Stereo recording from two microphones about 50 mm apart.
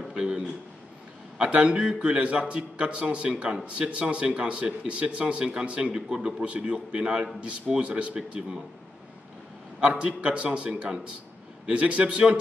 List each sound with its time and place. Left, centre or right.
0.1 s a sound: centre
1.4 s a man's voice: right
9.8 s a man's voice: centre